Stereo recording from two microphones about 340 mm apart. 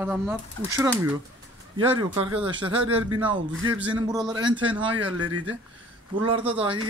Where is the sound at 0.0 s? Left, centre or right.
Centre.